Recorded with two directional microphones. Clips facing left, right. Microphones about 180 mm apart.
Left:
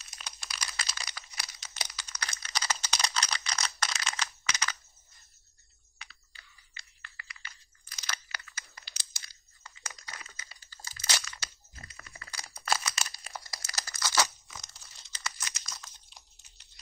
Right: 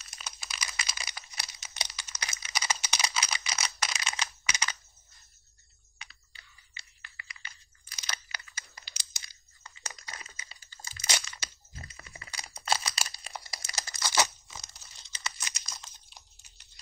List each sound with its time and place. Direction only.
0.2 s a sound: 5° right (ahead or behind)
1.6 s computer keyboard: 15° right (ahead or behind)
2.0 s a sound: 15° right (ahead or behind)
2.3 s computer keyboard: 10° right (ahead or behind)
5.9 s computer keyboard: 20° right (ahead or behind)
10.7 s crunch: 20° right (ahead or behind)
15.2 s computer keyboard: 15° right (ahead or behind)